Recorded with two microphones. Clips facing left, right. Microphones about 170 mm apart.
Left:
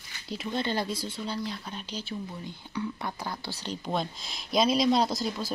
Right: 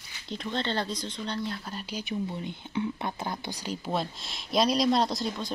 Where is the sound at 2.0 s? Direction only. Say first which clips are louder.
Right 4 dB; 20° right (ahead or behind).